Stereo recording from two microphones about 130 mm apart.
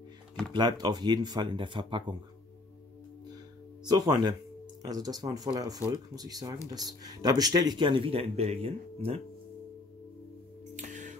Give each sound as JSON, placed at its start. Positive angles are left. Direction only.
{"t": 0.5, "sound": "speech", "side_deg": -35}
{"t": 3.8, "sound": "speech", "side_deg": -30}
{"t": 10.8, "sound": "music", "side_deg": -70}